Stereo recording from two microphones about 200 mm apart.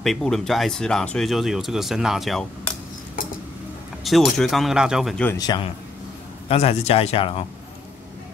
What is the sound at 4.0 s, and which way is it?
Speech, centre (ahead or behind).